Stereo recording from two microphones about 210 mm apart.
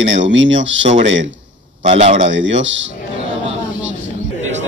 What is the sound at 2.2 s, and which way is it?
Speech, 60° right (ahead or behind).